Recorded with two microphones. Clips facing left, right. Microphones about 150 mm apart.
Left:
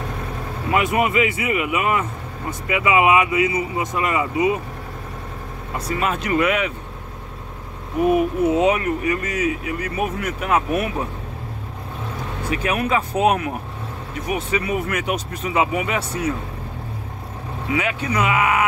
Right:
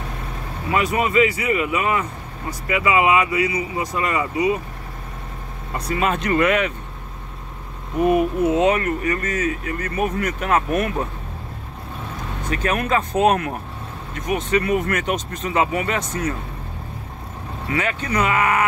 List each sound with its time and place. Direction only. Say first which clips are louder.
0.7 s speech: right 1 dB; 20° left (ahead or behind)
5.8 s speech: right 1 dB; centre (ahead or behind)
8.0 s speech: even; 5° left (ahead or behind)
12.4 s speech: even; 10° left (ahead or behind)
17.6 s speech: left 1 dB; 10° left (ahead or behind)